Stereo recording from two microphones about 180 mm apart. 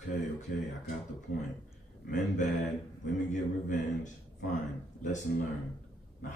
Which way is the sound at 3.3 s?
40° left (ahead or behind).